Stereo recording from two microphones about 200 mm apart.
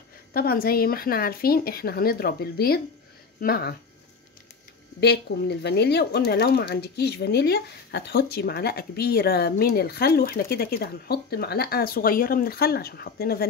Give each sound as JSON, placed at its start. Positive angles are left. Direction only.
{"t": 0.3, "sound": "speech", "side_deg": 50}
{"t": 5.0, "sound": "speech", "side_deg": 55}